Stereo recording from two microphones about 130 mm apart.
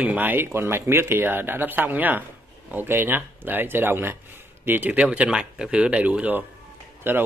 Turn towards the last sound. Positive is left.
turn(degrees=-15)  # may be behind; listen again after turning